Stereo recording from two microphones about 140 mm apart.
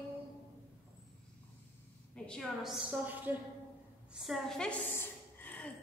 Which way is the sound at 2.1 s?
5° left (ahead or behind).